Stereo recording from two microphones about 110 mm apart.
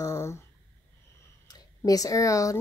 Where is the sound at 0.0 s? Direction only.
25° left (ahead or behind).